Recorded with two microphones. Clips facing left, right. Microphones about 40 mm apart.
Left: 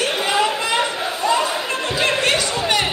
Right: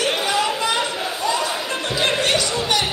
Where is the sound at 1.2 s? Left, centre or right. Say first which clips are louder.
Left 4 dB; left.